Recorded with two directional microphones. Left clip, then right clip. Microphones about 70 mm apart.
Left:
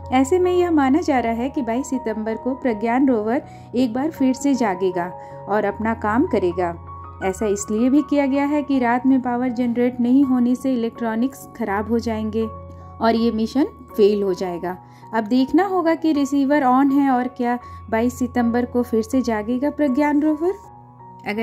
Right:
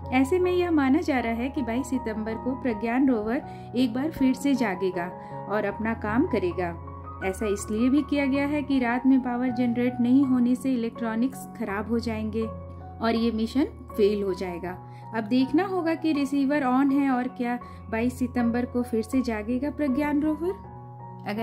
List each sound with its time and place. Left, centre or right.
0.1 s a woman's voice: left